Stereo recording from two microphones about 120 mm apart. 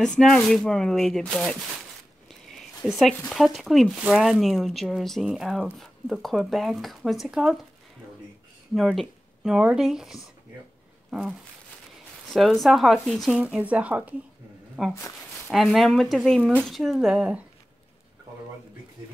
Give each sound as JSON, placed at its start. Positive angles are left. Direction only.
{"t": 0.0, "sound": "speech", "side_deg": 5}
{"t": 8.7, "sound": "speech", "side_deg": 0}
{"t": 11.1, "sound": "a sound", "side_deg": -5}
{"t": 12.3, "sound": "speech", "side_deg": 0}
{"t": 13.4, "sound": "speech", "side_deg": -10}
{"t": 15.0, "sound": "a sound", "side_deg": 25}
{"t": 15.5, "sound": "speech", "side_deg": 0}